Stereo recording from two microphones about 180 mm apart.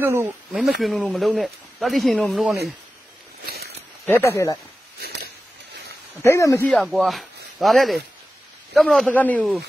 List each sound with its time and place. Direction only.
0.0 s speech: 10° right (ahead or behind)
0.7 s speech: centre (ahead or behind)
3.4 s walk: 60° right (ahead or behind)
4.1 s speech: 15° left (ahead or behind)
6.2 s speech: 15° left (ahead or behind)
6.7 s speech: centre (ahead or behind)